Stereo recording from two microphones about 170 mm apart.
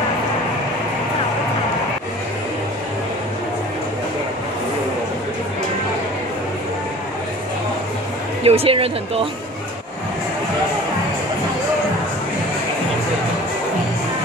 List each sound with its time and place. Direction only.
8.5 s speech: 35° right (ahead or behind)